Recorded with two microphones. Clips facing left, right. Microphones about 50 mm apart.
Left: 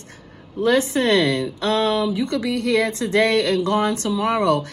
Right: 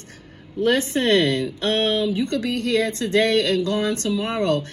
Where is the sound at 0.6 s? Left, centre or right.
Left.